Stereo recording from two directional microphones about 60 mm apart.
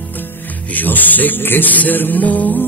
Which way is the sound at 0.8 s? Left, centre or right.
Left.